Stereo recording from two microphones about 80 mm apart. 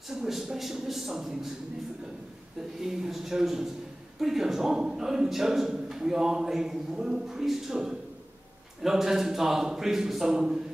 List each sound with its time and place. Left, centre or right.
0.1 s speech: centre
2.8 s speech: centre